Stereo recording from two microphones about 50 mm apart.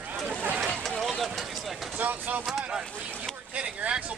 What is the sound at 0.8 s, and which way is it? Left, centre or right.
Run, centre.